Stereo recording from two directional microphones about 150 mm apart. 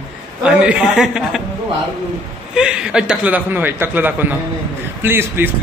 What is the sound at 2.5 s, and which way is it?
A man's voice, 5° right (ahead or behind).